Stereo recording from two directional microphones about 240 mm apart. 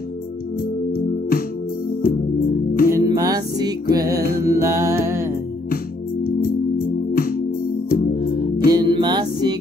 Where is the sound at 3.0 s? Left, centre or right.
Centre.